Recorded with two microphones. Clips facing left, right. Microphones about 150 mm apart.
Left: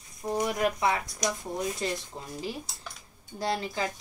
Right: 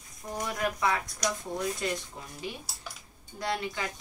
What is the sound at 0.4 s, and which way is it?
Speech, 20° left (ahead or behind).